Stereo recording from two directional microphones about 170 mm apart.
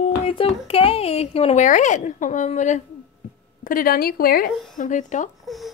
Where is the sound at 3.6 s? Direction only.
55° left (ahead or behind).